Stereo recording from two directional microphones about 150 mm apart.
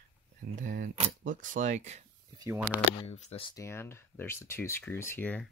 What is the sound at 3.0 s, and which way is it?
Speech, 40° left (ahead or behind).